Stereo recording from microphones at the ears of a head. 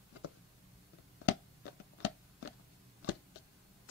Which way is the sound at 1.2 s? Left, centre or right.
Left.